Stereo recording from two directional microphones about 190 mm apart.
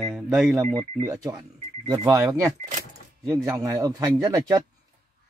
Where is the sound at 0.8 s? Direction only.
20° right (ahead or behind).